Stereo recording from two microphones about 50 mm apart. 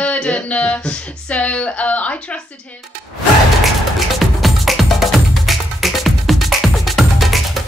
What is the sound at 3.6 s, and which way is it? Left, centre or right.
Music, centre.